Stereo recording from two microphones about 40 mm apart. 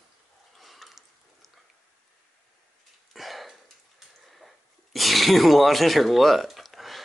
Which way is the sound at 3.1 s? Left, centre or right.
Centre.